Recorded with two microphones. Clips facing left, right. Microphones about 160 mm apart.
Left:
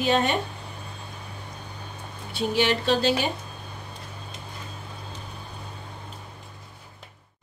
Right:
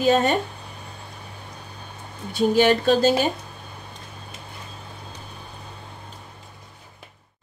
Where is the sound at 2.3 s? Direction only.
45° right (ahead or behind).